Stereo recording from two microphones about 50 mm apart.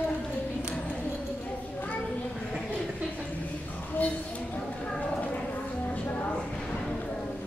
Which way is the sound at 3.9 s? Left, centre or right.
Left.